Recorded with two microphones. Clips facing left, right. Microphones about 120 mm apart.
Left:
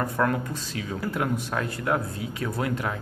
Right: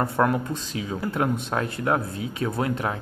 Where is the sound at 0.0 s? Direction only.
25° right (ahead or behind).